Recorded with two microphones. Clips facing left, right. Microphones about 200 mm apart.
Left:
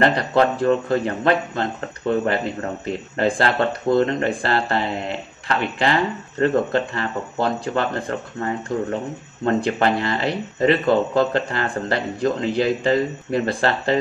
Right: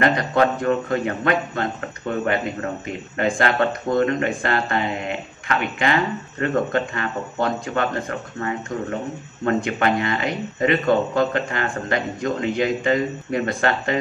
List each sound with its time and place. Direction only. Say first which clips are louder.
0.0 s speech: left 1 dB; 30° left (ahead or behind)